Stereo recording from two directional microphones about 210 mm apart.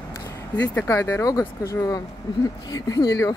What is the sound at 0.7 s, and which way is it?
Speech, 10° left (ahead or behind).